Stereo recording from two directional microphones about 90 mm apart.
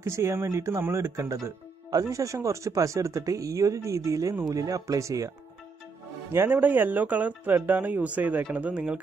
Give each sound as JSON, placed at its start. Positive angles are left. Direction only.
{"t": 0.0, "sound": "speech", "side_deg": -30}
{"t": 6.3, "sound": "speech", "side_deg": -25}